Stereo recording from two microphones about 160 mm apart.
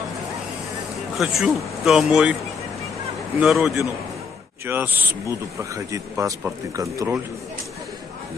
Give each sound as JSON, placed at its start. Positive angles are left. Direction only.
{"t": 1.1, "sound": "speech", "side_deg": 0}
{"t": 3.3, "sound": "speech", "side_deg": 0}